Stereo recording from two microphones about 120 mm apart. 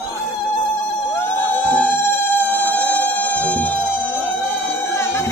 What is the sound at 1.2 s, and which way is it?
Music, 15° left (ahead or behind).